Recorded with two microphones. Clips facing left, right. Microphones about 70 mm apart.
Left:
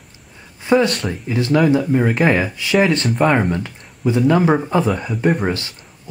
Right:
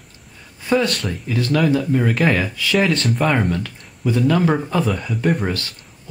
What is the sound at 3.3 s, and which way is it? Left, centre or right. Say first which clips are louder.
Speech: left 2 dB; centre.